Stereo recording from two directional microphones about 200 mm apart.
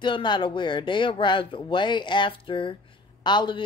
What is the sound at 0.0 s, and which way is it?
Speech, 25° left (ahead or behind).